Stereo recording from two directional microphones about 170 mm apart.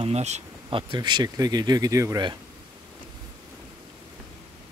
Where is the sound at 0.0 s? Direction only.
40° right (ahead or behind); by 2.3 s 20° right (ahead or behind).